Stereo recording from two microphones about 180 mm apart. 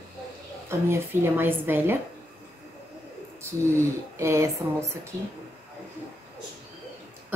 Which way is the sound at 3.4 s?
15° right (ahead or behind).